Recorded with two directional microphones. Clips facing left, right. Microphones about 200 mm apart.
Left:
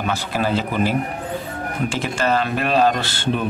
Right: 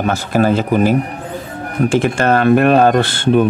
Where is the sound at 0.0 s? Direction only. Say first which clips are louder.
Right 7 dB; 45° right (ahead or behind).